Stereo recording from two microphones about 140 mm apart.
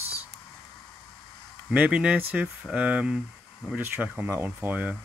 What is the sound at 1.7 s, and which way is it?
Speech, 10° right (ahead or behind).